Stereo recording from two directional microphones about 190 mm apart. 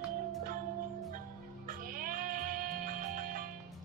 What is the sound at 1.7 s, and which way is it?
Music, 50° right (ahead or behind).